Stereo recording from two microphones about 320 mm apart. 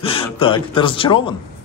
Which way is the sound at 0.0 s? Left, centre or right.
Centre.